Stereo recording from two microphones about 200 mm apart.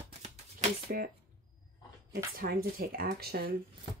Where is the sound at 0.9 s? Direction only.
50° right (ahead or behind).